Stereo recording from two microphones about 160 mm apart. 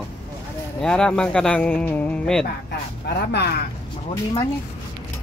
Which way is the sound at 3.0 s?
90° left.